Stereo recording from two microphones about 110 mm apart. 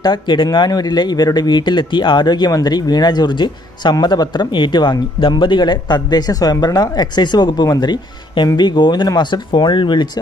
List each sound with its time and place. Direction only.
0.0 s speech: 45° left (ahead or behind)